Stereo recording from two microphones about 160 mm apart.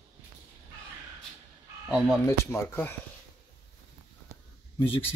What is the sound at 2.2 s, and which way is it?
Speech, 15° left (ahead or behind).